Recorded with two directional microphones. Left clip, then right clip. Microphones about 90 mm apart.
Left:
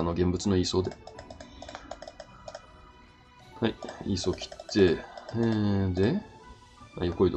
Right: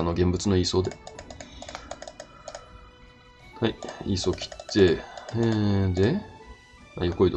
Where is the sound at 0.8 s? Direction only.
35° right (ahead or behind).